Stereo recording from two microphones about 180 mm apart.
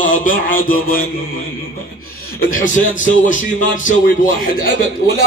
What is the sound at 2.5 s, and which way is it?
Speech, 45° left (ahead or behind).